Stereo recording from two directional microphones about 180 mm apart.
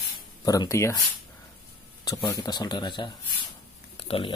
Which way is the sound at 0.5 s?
20° left (ahead or behind).